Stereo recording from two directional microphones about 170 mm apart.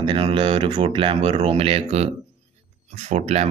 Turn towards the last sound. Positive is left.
turn(degrees=-40)  # may be behind; listen again after turning